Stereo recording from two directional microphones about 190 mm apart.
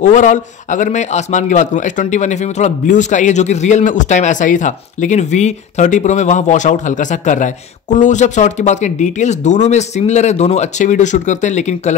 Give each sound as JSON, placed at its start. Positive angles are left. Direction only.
{"t": 0.0, "sound": "a man's voice", "side_deg": 40}